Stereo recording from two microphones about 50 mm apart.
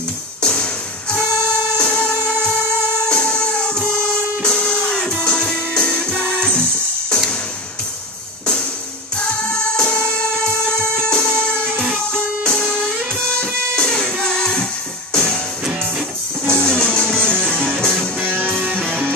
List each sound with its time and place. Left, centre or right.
0.4 s music: centre
1.8 s music: centre
9.1 s music: left
16.4 s music: centre